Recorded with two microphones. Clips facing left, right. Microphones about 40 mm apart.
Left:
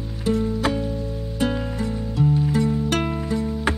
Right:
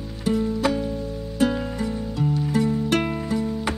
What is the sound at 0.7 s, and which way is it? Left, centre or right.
Music, centre.